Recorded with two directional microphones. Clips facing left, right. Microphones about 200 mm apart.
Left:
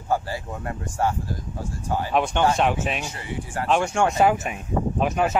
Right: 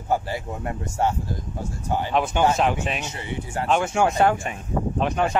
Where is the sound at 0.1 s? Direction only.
20° right (ahead or behind).